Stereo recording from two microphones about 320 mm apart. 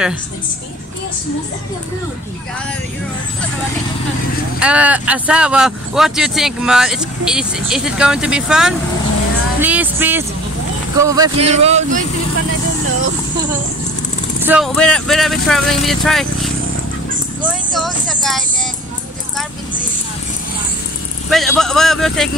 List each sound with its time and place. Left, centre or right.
4.6 s speech: centre; by 12.0 s right
14.4 s speech: centre
17.7 s speech: centre
21.3 s speech: centre